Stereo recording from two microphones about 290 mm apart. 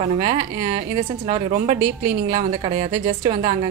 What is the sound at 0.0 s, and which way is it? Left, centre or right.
A woman's voice, right.